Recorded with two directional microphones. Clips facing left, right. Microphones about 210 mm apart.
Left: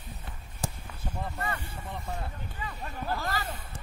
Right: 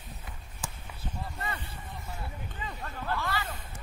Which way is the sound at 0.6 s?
40° left (ahead or behind).